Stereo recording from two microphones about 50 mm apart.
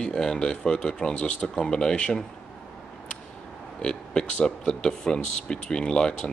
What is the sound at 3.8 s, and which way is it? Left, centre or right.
Speech, centre.